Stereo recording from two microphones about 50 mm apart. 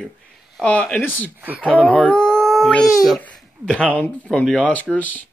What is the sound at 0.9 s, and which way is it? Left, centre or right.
Speech, left.